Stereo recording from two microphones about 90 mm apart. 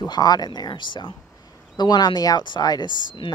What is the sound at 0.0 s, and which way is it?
Speech, 50° left (ahead or behind).